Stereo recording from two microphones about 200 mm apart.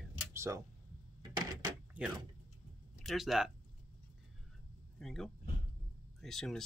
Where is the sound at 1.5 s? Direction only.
20° right (ahead or behind).